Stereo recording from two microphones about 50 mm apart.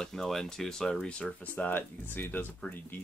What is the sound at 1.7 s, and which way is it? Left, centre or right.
Speech, left.